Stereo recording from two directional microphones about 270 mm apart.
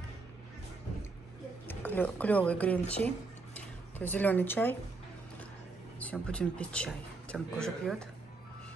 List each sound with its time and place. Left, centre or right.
1.7 s speech: centre
5.9 s a man's voice: centre